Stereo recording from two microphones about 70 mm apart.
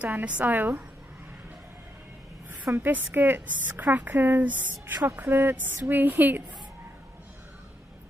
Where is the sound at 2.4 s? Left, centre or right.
Right.